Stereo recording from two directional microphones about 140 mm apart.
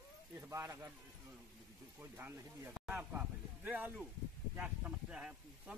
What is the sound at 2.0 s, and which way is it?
Speech, 15° right (ahead or behind).